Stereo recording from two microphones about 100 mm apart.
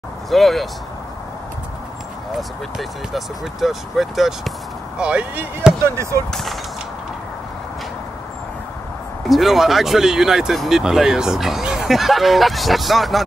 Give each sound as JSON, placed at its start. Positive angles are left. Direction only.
{"t": 0.3, "sound": "speech", "side_deg": 0}
{"t": 2.3, "sound": "speech", "side_deg": 0}
{"t": 5.9, "sound": "speech", "side_deg": -30}
{"t": 6.3, "sound": "speech", "side_deg": 0}
{"t": 9.3, "sound": "speech", "side_deg": 0}